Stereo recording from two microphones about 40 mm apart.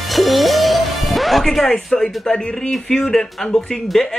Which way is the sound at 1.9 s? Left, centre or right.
Centre.